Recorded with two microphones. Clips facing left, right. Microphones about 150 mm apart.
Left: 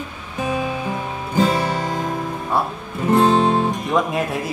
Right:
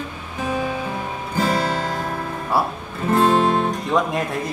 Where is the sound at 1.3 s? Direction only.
15° left (ahead or behind).